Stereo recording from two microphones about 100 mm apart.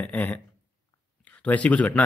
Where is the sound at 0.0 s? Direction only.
15° left (ahead or behind).